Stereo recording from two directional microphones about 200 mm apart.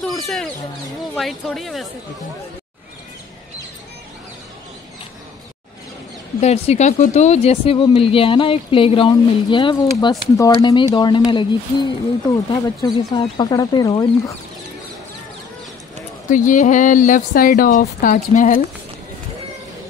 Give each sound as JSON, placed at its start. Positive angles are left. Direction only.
{"t": 0.0, "sound": "chicken", "side_deg": 0}
{"t": 1.1, "sound": "speech", "side_deg": 0}
{"t": 6.4, "sound": "speech", "side_deg": 30}
{"t": 16.3, "sound": "speech", "side_deg": 40}